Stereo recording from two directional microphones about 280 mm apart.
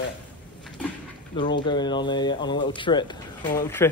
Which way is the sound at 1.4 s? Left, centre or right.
Centre.